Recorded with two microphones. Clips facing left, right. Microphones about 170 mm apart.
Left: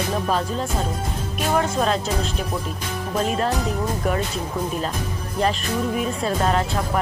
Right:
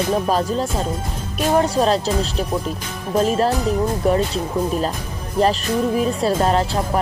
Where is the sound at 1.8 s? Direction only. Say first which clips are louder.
Right 4 dB; 35° right (ahead or behind).